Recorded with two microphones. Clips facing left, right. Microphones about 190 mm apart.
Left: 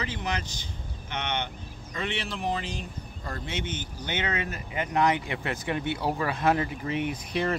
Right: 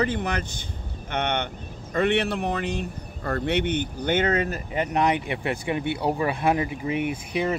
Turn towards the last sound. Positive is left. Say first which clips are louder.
# right 3 dB
turn(degrees=-10)  # may be behind; listen again after turning